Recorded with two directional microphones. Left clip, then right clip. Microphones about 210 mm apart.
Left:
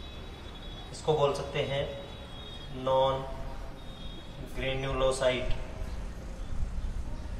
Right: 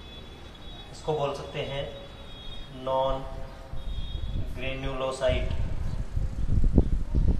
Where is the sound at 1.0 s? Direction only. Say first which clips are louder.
Left 2 dB; 5° left (ahead or behind).